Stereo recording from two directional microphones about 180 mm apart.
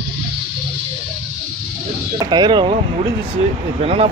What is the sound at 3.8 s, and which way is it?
Speech, 35° right (ahead or behind).